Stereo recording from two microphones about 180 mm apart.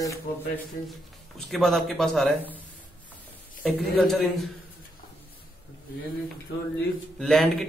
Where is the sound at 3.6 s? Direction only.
5° left (ahead or behind).